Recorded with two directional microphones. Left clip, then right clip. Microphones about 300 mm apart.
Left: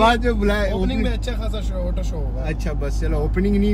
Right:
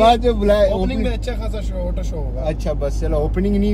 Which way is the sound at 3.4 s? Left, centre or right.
Centre.